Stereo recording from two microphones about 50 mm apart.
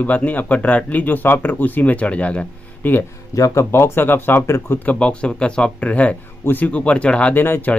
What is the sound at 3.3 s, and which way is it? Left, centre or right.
Speech, left.